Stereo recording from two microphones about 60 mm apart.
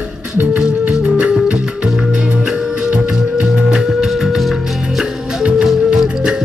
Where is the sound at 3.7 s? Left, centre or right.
Centre.